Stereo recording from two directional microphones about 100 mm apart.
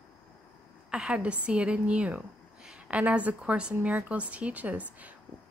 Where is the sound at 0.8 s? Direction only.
10° right (ahead or behind).